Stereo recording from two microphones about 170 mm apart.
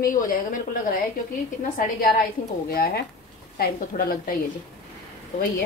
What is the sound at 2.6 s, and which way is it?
Speech, 60° left (ahead or behind).